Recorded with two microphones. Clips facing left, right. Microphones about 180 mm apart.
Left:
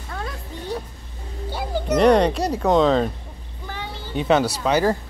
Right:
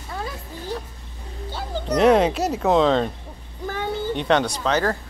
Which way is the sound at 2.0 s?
5° right (ahead or behind).